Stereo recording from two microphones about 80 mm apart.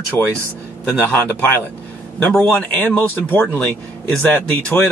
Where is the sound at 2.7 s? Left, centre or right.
Left.